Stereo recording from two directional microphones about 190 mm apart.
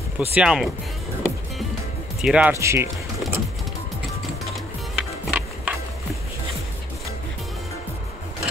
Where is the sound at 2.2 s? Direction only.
5° right (ahead or behind).